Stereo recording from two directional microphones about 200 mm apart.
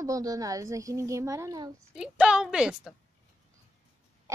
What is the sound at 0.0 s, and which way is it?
A child's voice, 15° right (ahead or behind).